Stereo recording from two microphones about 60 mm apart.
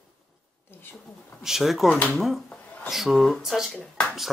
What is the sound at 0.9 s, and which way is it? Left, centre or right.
Speech, centre.